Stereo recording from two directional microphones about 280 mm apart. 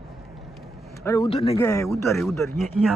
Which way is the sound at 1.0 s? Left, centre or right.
Centre.